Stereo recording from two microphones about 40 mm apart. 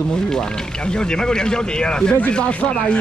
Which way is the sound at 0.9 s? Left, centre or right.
Left.